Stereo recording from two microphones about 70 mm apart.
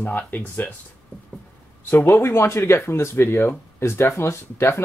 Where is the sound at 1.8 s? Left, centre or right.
Left.